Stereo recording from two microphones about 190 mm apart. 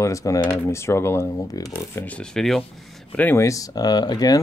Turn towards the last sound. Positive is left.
turn(degrees=20)  # may be behind; listen again after turning